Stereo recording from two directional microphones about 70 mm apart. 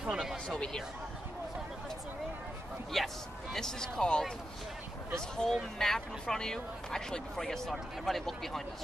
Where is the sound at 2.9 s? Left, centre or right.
Centre.